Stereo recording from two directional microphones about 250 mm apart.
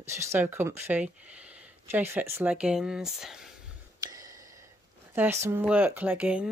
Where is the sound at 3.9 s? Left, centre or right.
Centre.